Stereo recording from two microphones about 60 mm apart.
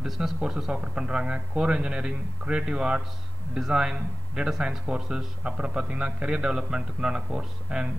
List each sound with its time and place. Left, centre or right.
0.4 s a man's voice: centre